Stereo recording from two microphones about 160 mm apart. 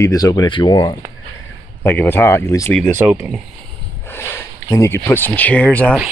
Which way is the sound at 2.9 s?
15° right (ahead or behind).